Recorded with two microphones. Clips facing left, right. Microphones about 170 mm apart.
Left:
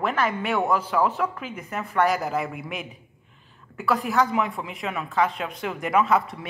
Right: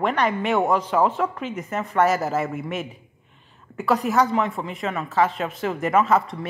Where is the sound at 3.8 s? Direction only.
40° right (ahead or behind).